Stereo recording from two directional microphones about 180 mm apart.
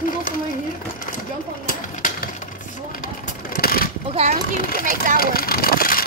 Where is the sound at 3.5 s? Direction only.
55° left (ahead or behind).